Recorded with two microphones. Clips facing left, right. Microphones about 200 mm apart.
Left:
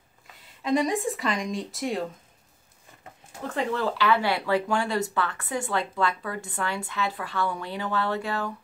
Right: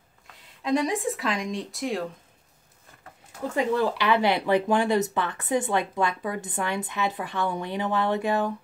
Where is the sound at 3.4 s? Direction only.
10° right (ahead or behind).